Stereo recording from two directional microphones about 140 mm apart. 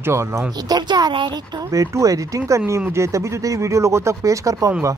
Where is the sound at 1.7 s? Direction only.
25° right (ahead or behind).